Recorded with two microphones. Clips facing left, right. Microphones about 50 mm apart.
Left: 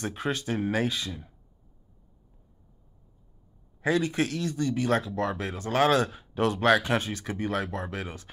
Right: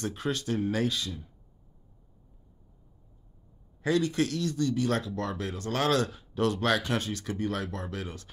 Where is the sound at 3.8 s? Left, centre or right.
Centre.